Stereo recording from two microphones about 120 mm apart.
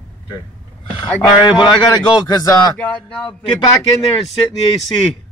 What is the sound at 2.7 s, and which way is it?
Speech, 10° left (ahead or behind).